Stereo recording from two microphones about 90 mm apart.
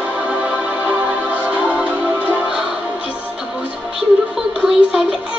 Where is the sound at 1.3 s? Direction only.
15° right (ahead or behind).